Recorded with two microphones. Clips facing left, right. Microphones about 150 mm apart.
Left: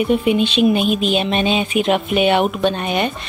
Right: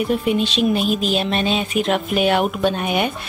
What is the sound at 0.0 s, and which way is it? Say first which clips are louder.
Speech: left 3 dB; 5° left (ahead or behind).